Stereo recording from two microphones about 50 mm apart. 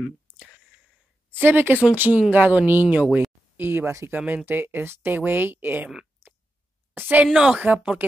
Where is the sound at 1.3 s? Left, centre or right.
Right.